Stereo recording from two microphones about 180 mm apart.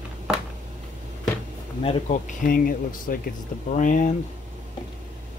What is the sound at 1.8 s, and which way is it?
Speech, 45° left (ahead or behind).